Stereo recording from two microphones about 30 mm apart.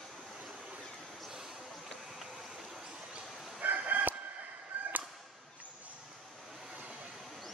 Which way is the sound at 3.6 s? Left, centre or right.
Right.